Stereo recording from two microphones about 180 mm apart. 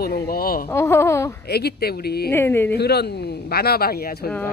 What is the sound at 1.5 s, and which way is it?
Speech, 60° left (ahead or behind).